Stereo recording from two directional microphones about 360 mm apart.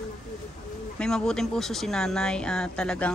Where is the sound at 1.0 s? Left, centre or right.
Centre.